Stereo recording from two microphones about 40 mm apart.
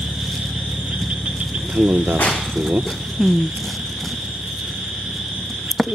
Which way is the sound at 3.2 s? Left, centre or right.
Centre.